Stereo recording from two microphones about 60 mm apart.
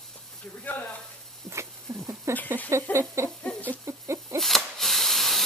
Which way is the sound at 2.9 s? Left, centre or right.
Right.